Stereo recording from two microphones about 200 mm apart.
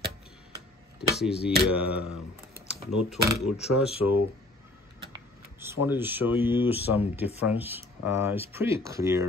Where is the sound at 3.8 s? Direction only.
10° right (ahead or behind).